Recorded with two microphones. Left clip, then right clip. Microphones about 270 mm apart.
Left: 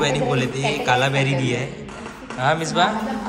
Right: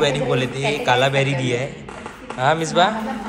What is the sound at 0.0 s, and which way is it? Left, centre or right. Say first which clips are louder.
A man's voice: right 1 dB; centre.